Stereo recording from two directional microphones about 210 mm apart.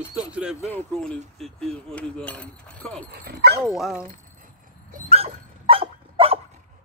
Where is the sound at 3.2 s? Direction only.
50° right (ahead or behind).